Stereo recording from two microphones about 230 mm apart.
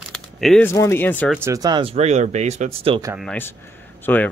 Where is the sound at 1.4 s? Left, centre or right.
Centre.